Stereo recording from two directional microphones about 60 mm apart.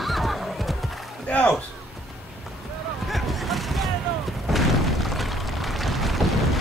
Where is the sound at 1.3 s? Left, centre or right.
Left.